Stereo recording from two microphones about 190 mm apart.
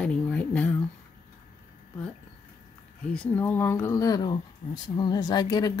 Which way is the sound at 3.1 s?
10° left (ahead or behind).